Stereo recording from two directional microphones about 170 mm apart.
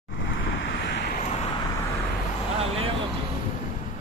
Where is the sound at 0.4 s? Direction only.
90° left.